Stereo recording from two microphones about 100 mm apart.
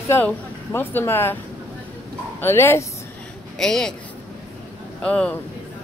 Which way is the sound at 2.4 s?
25° left (ahead or behind).